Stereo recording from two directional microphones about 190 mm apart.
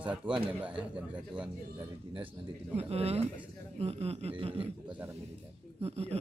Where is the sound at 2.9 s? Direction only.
30° right (ahead or behind).